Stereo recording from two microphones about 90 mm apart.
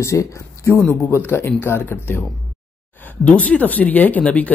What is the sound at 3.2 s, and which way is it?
Speech, 15° left (ahead or behind).